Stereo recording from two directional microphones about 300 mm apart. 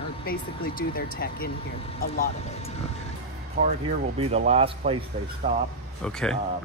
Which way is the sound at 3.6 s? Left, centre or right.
Right.